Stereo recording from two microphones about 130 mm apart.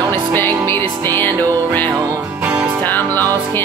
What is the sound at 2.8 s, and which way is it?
Music, 15° left (ahead or behind).